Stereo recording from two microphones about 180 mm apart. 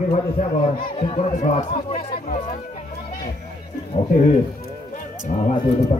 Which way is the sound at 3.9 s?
30° left (ahead or behind).